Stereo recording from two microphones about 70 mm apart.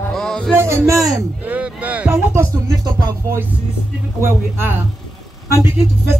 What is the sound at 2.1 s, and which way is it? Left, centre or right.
Music, right.